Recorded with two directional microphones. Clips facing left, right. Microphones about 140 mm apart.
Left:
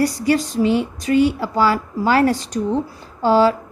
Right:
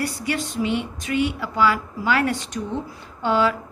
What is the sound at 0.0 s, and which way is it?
Speech, 35° left (ahead or behind).